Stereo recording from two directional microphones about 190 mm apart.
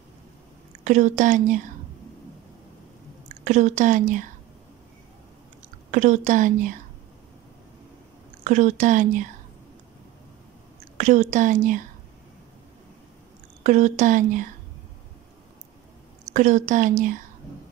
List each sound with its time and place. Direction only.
0.8 s a woman's voice: 40° right (ahead or behind)
3.4 s a woman's voice: 40° right (ahead or behind)
5.9 s a woman's voice: 40° right (ahead or behind)
8.5 s a woman's voice: 40° right (ahead or behind)
11.0 s a woman's voice: 40° right (ahead or behind)
13.7 s a woman's voice: 40° right (ahead or behind)
16.3 s a woman's voice: 40° right (ahead or behind)